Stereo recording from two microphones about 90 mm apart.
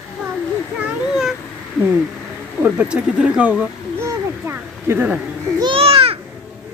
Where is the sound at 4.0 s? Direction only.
30° right (ahead or behind).